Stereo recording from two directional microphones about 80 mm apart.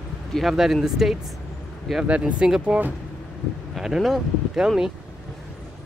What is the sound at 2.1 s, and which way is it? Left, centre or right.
Speech, centre.